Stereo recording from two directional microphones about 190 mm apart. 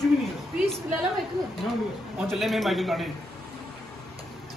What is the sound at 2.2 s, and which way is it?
Speech, centre (ahead or behind).